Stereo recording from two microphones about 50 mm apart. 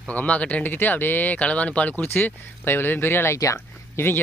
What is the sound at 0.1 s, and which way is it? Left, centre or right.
Speech, left.